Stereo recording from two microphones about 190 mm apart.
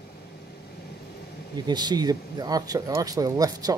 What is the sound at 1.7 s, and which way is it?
Speech, 20° right (ahead or behind).